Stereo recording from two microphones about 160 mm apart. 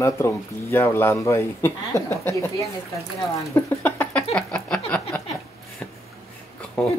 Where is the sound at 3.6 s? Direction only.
15° left (ahead or behind).